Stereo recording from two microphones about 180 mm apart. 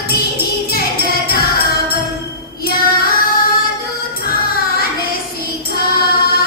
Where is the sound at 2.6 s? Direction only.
55° left (ahead or behind).